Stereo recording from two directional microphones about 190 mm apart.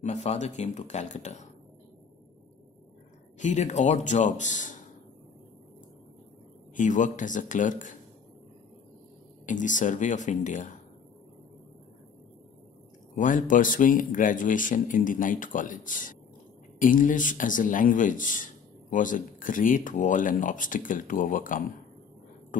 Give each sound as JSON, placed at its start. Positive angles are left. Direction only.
{"t": 0.0, "sound": "speech", "side_deg": 35}
{"t": 3.3, "sound": "speech", "side_deg": 40}
{"t": 6.7, "sound": "speech", "side_deg": 40}
{"t": 9.5, "sound": "speech", "side_deg": 40}
{"t": 13.1, "sound": "a man's voice", "side_deg": 40}
{"t": 22.5, "sound": "beatboxing", "side_deg": 45}